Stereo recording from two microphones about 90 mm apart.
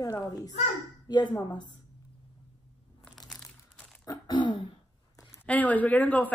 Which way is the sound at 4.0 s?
40° left (ahead or behind).